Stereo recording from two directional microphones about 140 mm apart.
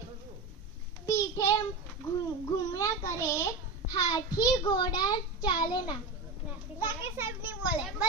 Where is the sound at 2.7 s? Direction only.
20° left (ahead or behind).